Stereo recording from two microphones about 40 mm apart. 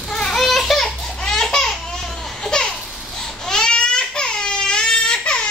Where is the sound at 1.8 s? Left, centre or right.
Centre.